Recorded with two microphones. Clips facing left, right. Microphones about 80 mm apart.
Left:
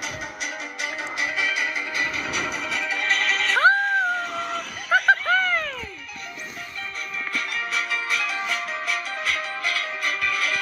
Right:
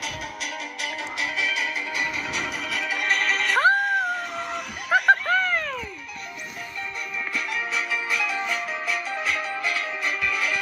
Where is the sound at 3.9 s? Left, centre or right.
Centre.